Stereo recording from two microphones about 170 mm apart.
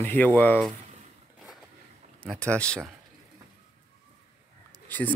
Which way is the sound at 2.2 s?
5° left (ahead or behind).